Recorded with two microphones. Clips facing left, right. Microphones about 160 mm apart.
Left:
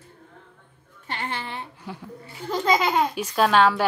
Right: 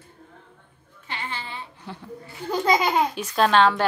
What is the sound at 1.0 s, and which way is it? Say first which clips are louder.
Speech: left 3 dB; 55° left (ahead or behind).